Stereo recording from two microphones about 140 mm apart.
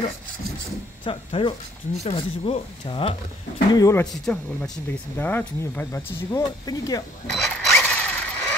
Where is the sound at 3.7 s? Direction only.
25° left (ahead or behind).